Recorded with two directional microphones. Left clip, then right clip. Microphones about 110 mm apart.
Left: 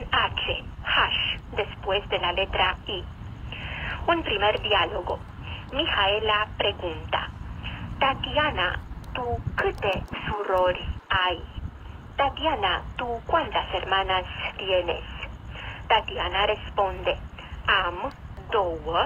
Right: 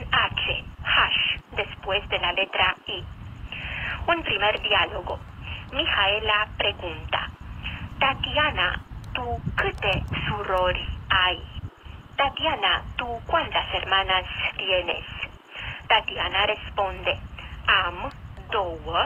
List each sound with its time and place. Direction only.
0.0 s radio: 15° right (ahead or behind)
5.1 s speech: 15° right (ahead or behind)